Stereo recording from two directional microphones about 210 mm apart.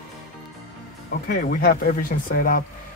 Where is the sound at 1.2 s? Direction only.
40° left (ahead or behind).